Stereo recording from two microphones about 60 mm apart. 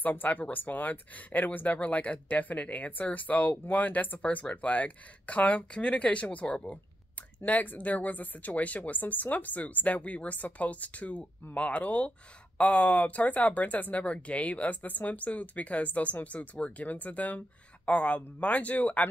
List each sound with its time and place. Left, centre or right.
0.0 s speech: left
7.4 s speech: left
16.3 s speech: centre
16.7 s speech: left